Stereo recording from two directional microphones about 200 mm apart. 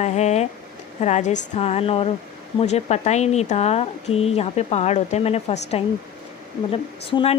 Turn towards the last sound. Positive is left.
turn(degrees=25)  # may be behind; listen again after turning